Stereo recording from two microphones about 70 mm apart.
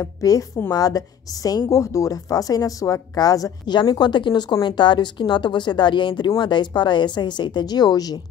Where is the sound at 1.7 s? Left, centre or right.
Left.